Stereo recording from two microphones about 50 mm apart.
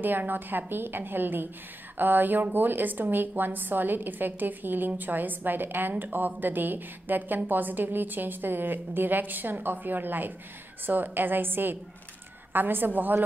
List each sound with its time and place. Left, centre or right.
0.0 s a woman's voice: right